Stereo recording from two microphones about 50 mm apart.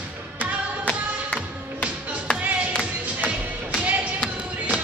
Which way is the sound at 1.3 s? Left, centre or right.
Right.